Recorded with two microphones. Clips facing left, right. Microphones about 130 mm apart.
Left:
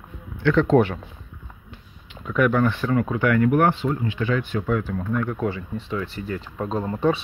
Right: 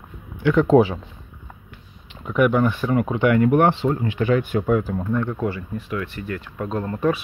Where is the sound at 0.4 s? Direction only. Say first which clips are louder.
Right 2 dB; 10° right (ahead or behind).